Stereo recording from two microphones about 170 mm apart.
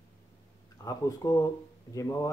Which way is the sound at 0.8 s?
20° left (ahead or behind).